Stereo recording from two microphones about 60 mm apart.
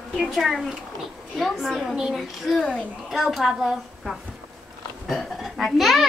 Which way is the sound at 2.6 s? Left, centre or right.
Centre.